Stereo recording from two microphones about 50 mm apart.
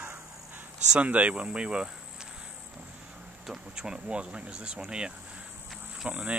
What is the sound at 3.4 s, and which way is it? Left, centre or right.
Speech, centre.